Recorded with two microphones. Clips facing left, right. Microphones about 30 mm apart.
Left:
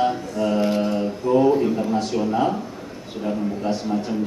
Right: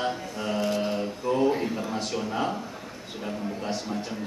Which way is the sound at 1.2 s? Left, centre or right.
Centre.